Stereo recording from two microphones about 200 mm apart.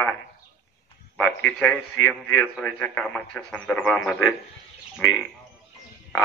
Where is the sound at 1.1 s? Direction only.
5° left (ahead or behind).